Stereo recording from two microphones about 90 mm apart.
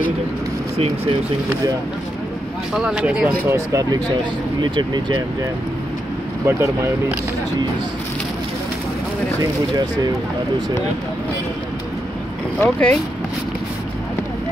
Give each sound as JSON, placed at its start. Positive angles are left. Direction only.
{"t": 2.7, "sound": "speech", "side_deg": -10}
{"t": 3.4, "sound": "speech", "side_deg": -30}
{"t": 3.9, "sound": "speech", "side_deg": -55}
{"t": 6.4, "sound": "speech", "side_deg": -30}
{"t": 12.5, "sound": "speech", "side_deg": 10}